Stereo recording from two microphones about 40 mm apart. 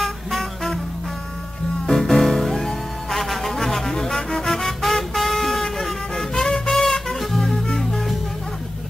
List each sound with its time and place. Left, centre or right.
0.0 s music: centre
1.9 s music: centre